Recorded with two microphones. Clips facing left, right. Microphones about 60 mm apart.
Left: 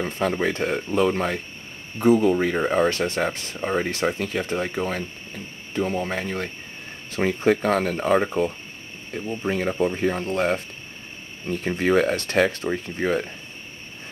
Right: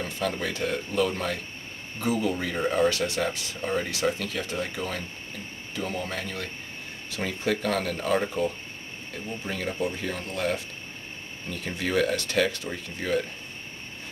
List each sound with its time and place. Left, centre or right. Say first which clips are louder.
0.0 s speech: left 6 dB; left